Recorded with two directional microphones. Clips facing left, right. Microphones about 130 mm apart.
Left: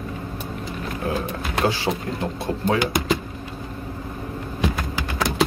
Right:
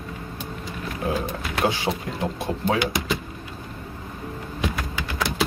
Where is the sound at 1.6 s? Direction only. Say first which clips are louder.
Left 1 dB; 20° right (ahead or behind).